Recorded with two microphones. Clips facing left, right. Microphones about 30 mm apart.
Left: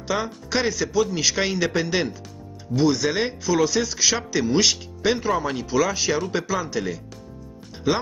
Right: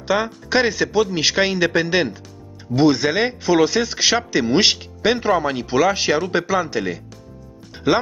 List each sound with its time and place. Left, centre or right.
0.1 s speech: right
2.7 s speech: right
4.5 s speech: right
5.0 s speech: right